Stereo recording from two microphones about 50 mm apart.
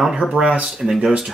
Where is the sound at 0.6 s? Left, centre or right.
Centre.